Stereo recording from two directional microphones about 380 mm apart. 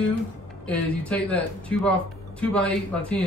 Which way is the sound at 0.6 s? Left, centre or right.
Centre.